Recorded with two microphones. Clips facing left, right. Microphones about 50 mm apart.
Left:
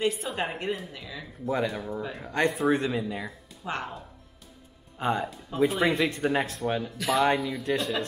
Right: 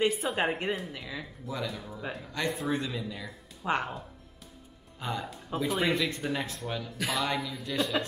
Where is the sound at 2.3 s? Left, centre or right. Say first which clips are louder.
Left 7 dB; left.